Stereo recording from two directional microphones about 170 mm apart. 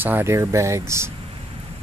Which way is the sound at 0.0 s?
15° right (ahead or behind).